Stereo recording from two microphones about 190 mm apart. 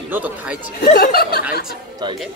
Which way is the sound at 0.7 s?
50° left (ahead or behind).